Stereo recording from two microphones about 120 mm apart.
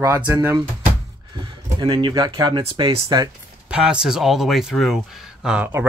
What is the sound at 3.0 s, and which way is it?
Speech, 35° right (ahead or behind).